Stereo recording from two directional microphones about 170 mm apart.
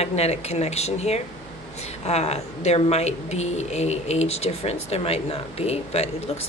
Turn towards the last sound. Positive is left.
turn(degrees=35)  # may be behind; listen again after turning